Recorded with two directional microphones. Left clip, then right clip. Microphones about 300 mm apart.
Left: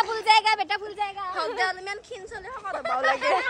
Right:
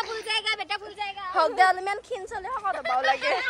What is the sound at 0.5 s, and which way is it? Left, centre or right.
Speech, left.